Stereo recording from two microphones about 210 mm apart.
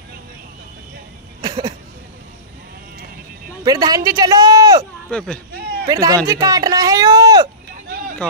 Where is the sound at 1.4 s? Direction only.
20° right (ahead or behind).